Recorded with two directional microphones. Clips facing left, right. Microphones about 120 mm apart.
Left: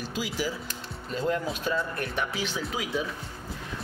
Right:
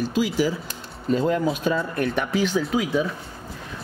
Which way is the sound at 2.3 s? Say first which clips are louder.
Right 10 dB; 45° right (ahead or behind).